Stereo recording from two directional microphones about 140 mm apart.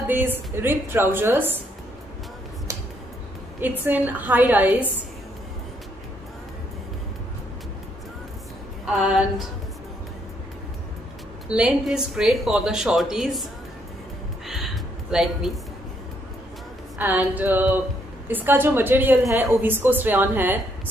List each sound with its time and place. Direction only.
0.1 s a woman's voice: 15° right (ahead or behind)
2.7 s a sound: 20° right (ahead or behind)
3.6 s a woman's voice: 15° right (ahead or behind)
8.8 s speech: 5° right (ahead or behind)
11.4 s speech: 5° right (ahead or behind)
14.5 s a sound: centre (ahead or behind)
17.0 s a woman's voice: 10° right (ahead or behind)